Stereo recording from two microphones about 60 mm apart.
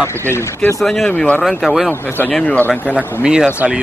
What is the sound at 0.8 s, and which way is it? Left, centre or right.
Speech, centre.